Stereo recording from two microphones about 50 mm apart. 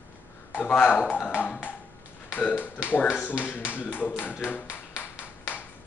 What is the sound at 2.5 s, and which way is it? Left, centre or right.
Speech, left.